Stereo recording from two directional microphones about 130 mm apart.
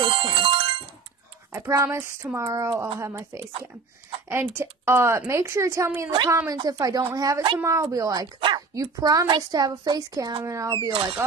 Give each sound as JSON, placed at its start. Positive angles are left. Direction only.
{"t": 0.0, "sound": "music", "side_deg": -45}
{"t": 1.5, "sound": "a woman's voice", "side_deg": -20}
{"t": 3.2, "sound": "a woman's voice", "side_deg": -35}
{"t": 4.3, "sound": "a woman's voice", "side_deg": -20}
{"t": 6.6, "sound": "a woman's voice", "side_deg": -30}
{"t": 8.4, "sound": "speech", "side_deg": -40}
{"t": 8.7, "sound": "a woman's voice", "side_deg": -25}
{"t": 10.9, "sound": "speech", "side_deg": -45}